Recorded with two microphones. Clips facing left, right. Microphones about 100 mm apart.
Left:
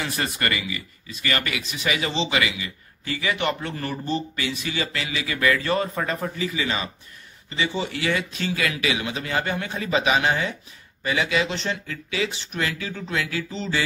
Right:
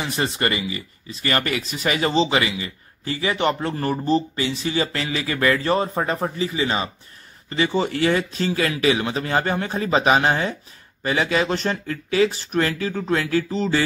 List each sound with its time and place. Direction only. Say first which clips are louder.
0.0 s speech: right 3 dB; 25° right (ahead or behind)
7.4 s speech: right 5 dB; 45° right (ahead or behind)